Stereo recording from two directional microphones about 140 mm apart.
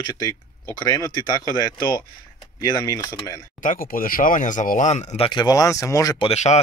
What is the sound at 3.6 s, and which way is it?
Speech, 80° left.